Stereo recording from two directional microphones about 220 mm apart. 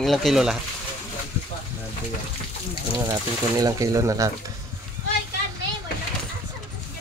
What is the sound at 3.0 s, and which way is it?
Speech, 15° right (ahead or behind).